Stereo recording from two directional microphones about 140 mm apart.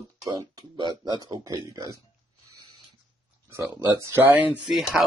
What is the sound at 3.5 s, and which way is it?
Speech, 20° right (ahead or behind).